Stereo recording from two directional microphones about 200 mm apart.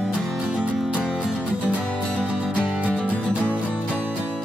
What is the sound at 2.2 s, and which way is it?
Music, 5° right (ahead or behind).